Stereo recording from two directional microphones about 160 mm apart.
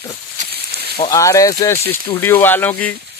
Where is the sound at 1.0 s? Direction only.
20° left (ahead or behind).